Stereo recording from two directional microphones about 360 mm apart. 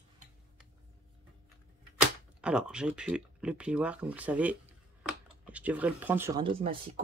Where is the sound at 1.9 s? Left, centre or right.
Centre.